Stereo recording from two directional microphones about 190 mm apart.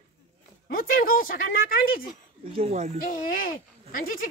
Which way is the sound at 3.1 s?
50° left (ahead or behind).